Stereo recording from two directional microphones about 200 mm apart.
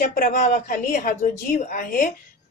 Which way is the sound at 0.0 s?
45° left (ahead or behind).